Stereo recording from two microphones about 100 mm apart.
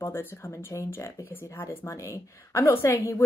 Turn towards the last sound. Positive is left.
turn(degrees=30)  # may be behind; listen again after turning